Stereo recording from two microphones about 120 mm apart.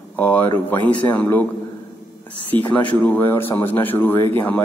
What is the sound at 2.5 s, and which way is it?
Speech, 15° left (ahead or behind).